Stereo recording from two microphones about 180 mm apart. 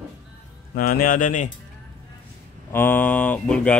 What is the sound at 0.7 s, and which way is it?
Speech, 55° left (ahead or behind).